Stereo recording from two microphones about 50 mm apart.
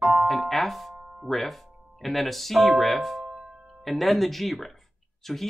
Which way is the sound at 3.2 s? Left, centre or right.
Right.